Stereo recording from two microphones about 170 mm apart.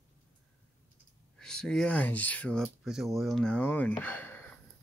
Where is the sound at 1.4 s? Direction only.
5° left (ahead or behind).